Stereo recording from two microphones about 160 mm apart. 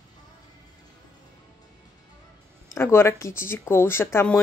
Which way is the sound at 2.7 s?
15° left (ahead or behind).